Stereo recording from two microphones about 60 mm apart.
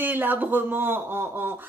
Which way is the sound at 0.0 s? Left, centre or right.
Right.